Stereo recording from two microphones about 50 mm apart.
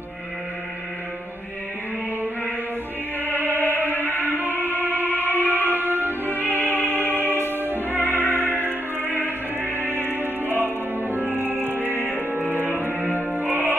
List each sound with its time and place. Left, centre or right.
3.3 s music: right
6.6 s music: left
7.5 s music: right
8.0 s music: left
8.5 s music: right